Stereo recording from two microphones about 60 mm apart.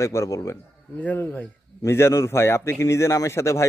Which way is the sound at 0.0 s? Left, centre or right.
Left.